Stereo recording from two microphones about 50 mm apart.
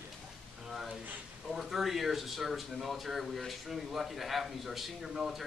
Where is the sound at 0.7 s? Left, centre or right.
Centre.